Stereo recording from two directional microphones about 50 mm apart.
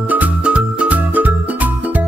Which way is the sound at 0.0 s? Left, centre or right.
Right.